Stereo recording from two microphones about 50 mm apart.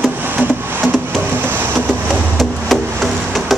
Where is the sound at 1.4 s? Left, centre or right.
Right.